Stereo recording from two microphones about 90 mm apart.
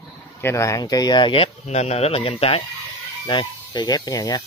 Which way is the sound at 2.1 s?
85° left.